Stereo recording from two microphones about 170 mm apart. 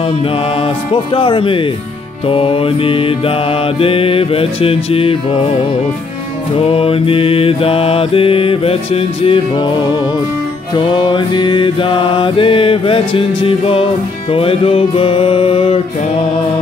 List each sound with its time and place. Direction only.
1.1 s mantra: 30° left (ahead or behind)
10.8 s mantra: 30° left (ahead or behind)